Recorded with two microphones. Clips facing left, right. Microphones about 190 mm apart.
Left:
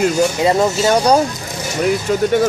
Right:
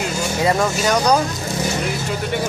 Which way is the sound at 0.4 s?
25° left (ahead or behind).